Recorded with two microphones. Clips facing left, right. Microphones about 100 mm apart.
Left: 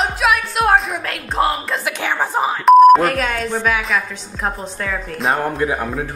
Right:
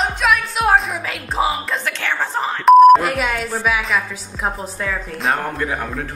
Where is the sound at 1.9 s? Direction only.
15° left (ahead or behind).